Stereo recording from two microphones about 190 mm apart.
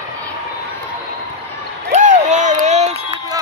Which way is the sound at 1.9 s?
40° right (ahead or behind).